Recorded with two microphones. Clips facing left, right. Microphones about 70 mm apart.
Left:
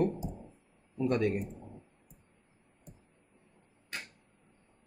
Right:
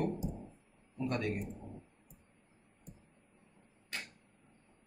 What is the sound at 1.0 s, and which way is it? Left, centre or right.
Speech, centre.